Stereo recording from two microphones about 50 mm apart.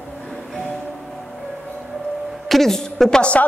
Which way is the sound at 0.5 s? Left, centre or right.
Centre.